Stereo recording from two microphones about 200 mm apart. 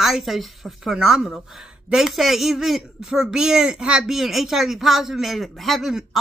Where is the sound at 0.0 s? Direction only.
Centre (ahead or behind).